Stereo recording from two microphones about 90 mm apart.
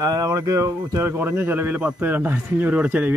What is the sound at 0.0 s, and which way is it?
Speech, 45° right (ahead or behind).